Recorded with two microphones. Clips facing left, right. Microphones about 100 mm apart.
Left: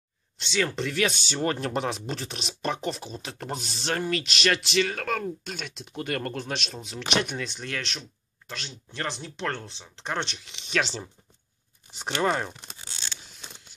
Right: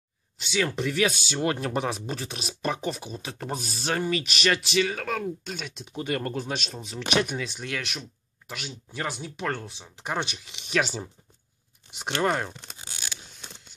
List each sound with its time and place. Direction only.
0.4 s speech: 5° right (ahead or behind)
12.7 s a sound: 15° right (ahead or behind)
13.2 s mechanisms: centre (ahead or behind)